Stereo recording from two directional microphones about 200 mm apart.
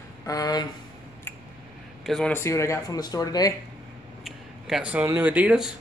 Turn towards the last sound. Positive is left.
turn(degrees=-5)  # may be behind; listen again after turning